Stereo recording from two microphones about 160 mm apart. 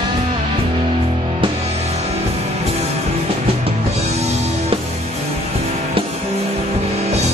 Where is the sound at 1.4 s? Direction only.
45° right (ahead or behind).